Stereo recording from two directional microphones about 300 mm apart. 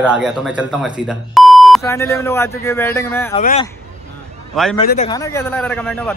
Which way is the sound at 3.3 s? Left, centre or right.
Left.